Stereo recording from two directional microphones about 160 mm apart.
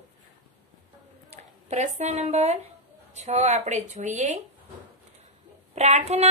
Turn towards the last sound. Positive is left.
turn(degrees=-45)  # may be behind; listen again after turning